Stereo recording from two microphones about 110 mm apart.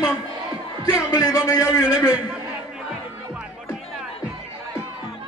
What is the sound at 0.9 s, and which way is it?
Speech, 35° left (ahead or behind).